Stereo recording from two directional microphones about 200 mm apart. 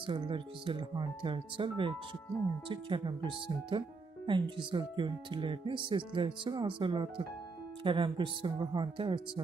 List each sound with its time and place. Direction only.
0.0 s speech: 25° right (ahead or behind)